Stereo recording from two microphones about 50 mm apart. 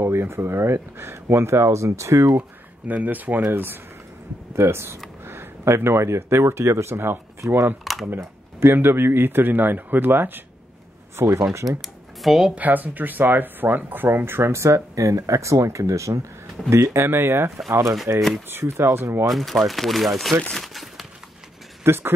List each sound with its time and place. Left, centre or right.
0.0 s speech: right
2.9 s speech: right
4.6 s speech: right
5.2 s speech: right
7.4 s speech: right
7.8 s a sound: centre
8.2 s speech: right
11.1 s speech: right
11.8 s dishes: centre
12.5 s speech: right
16.6 s speech: right
19.3 s speech: centre
20.5 s crumpling: centre
21.8 s speech: right